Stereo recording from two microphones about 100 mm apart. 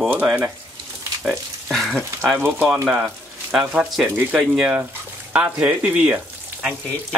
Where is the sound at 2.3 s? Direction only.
20° right (ahead or behind).